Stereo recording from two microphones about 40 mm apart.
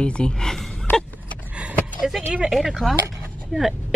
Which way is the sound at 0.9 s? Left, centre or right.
Left.